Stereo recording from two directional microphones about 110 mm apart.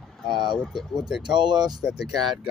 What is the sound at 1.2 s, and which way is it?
Speech, 45° right (ahead or behind).